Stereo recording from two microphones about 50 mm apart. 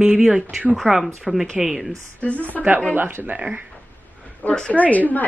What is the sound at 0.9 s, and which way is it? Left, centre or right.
Speech, centre.